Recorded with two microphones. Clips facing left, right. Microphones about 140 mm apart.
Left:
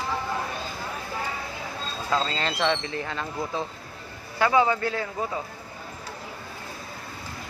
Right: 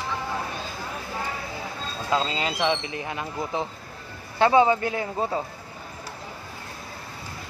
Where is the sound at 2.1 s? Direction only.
15° right (ahead or behind).